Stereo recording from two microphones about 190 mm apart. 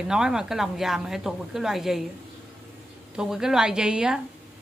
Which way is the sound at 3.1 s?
5° right (ahead or behind).